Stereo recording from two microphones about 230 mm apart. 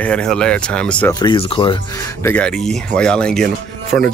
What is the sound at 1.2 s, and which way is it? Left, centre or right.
Speech, left.